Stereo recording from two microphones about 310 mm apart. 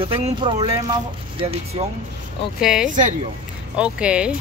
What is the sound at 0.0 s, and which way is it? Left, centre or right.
Speech, centre.